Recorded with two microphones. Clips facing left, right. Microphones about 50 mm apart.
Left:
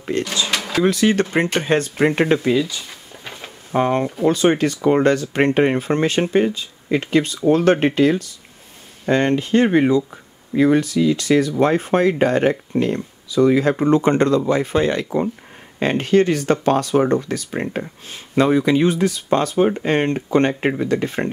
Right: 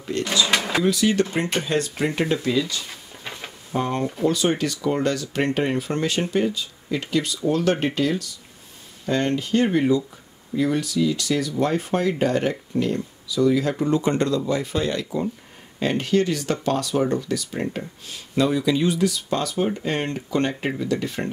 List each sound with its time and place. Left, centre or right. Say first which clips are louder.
0.1 s speech: left 3 dB; left
0.5 s speech: left 1 dB; centre
0.8 s speech: left 7 dB; left
2.9 s a sound: left 1 dB; centre
3.7 s speech: left 6 dB; left